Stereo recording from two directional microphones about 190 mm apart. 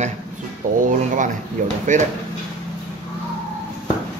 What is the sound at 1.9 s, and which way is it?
Speech, 40° right (ahead or behind).